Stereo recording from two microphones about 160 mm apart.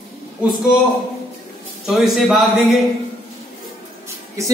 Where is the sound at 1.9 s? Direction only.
Centre (ahead or behind).